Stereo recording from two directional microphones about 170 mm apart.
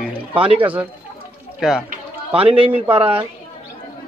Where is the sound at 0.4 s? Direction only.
30° right (ahead or behind).